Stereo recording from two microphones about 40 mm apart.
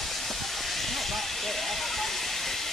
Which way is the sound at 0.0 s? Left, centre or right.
Centre.